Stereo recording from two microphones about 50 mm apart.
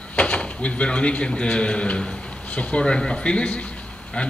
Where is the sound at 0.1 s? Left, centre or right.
Left.